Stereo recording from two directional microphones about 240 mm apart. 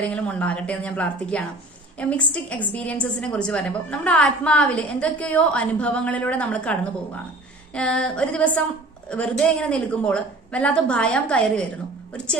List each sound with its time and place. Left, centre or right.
0.1 s a woman's voice: centre